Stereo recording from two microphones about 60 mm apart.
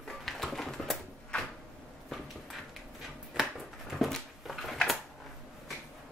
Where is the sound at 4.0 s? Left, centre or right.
Centre.